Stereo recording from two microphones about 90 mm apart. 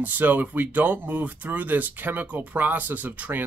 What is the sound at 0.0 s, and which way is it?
Speech, 20° right (ahead or behind).